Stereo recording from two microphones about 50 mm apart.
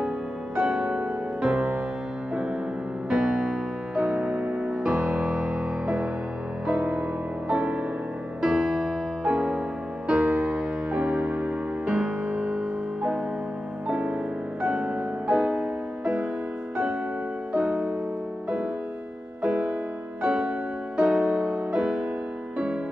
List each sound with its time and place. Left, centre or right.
0.6 s music: right
3.1 s music: centre
3.9 s music: right
6.7 s music: right
17.5 s music: right
19.4 s music: centre
21.7 s music: centre